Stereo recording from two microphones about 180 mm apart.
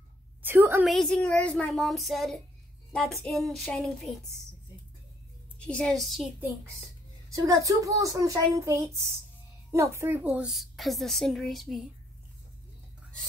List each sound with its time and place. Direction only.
0.4 s a sound: 10° right (ahead or behind)
0.8 s a woman's voice: centre (ahead or behind)
5.6 s a woman's voice: 5° left (ahead or behind)
7.2 s a woman's voice: 20° right (ahead or behind); by 11.8 s centre (ahead or behind)